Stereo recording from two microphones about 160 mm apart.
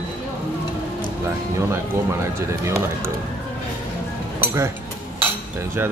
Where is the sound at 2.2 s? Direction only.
15° right (ahead or behind).